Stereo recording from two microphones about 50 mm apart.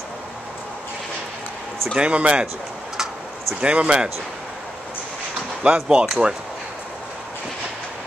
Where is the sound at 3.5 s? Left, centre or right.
Right.